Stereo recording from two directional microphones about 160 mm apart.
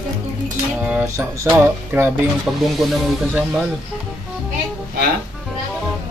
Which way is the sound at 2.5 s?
5° right (ahead or behind).